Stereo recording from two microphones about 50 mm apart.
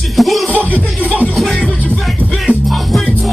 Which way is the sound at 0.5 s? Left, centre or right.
Left.